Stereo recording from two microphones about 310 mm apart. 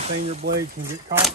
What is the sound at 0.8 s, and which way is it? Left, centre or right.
Speech, right.